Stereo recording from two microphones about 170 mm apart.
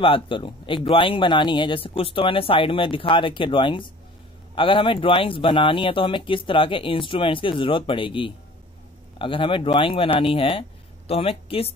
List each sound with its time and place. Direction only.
0.0 s speech: 30° left (ahead or behind)